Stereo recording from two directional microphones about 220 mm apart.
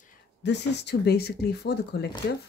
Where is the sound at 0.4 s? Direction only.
50° left (ahead or behind).